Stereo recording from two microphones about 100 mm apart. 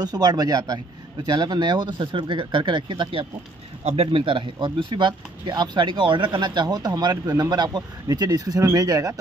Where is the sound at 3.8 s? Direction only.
90° right; by 4.4 s 65° right (ahead or behind).